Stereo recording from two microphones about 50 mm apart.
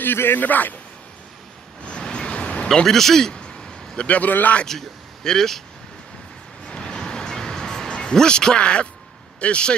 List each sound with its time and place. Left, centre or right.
0.0 s speech: left
1.9 s a sound: centre
4.2 s speech: left
4.6 s speech: centre
6.7 s music: centre
9.4 s speech: left